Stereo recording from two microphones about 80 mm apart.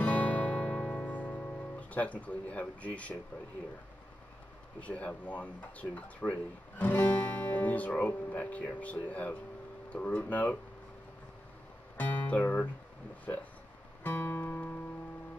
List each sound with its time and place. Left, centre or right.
0.0 s music: centre
4.7 s speech: centre
12.0 s speech: centre
14.0 s guitar: left